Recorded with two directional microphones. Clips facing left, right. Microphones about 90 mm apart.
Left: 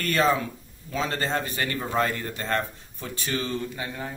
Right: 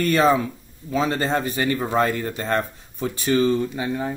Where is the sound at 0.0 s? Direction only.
15° right (ahead or behind).